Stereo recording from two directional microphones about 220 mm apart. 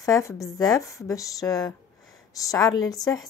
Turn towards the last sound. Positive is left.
turn(degrees=15)  # may be behind; listen again after turning